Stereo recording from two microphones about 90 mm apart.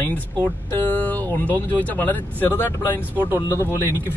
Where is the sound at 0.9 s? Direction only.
20° left (ahead or behind).